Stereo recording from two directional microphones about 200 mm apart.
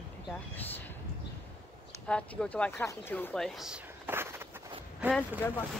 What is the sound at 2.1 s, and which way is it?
Speech, 5° left (ahead or behind).